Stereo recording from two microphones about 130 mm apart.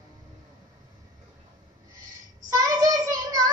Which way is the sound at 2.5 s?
30° right (ahead or behind).